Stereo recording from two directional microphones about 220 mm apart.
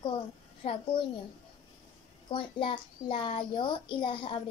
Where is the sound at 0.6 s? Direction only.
25° left (ahead or behind).